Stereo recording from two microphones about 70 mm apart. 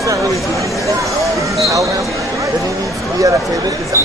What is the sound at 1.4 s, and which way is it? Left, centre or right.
Speech, right.